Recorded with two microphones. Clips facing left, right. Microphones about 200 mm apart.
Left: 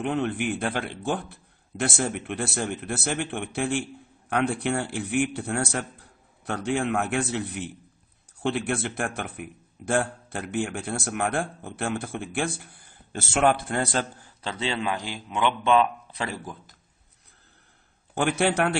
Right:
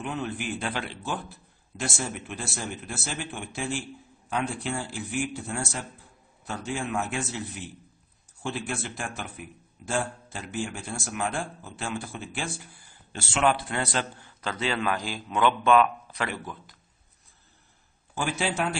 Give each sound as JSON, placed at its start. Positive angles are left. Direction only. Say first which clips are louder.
{"t": 0.0, "sound": "a man's voice", "louder": "left 6 dB", "side_deg": 60}
{"t": 14.4, "sound": "a man's voice", "louder": "even", "side_deg": 25}
{"t": 18.1, "sound": "a man's voice", "louder": "left 5 dB", "side_deg": 60}